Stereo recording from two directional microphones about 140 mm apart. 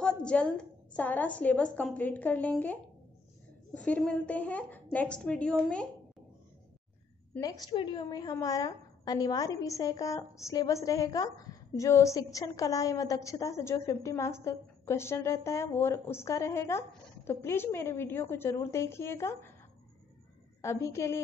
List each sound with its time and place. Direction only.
0.0 s a woman's voice: 5° left (ahead or behind)
7.3 s a woman's voice: 25° left (ahead or behind)
7.7 s a woman's voice: 35° left (ahead or behind); by 19.5 s 20° left (ahead or behind)
20.6 s a woman's voice: 20° left (ahead or behind)